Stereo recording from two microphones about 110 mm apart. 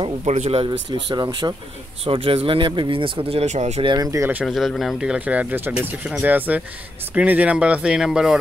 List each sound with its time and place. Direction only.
0.0 s speech: 65° right (ahead or behind)
0.7 s speech: 40° right (ahead or behind)
2.0 s speech: 55° right (ahead or behind); by 3.8 s 90° right
3.8 s speech: 35° right (ahead or behind)
4.5 s speech: centre (ahead or behind)